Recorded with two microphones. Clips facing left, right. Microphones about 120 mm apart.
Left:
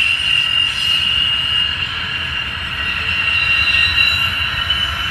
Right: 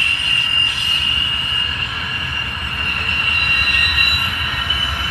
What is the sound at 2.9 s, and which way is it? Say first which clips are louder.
Vehicle: even; 5° right (ahead or behind).